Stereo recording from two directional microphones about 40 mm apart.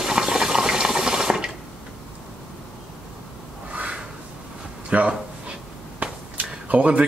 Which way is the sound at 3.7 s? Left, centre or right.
Right.